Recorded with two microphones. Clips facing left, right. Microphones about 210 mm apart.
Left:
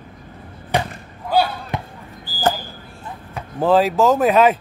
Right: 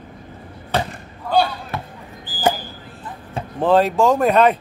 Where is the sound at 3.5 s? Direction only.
Centre (ahead or behind).